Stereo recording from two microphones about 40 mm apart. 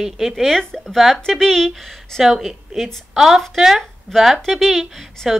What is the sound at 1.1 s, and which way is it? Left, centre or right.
Speech, centre.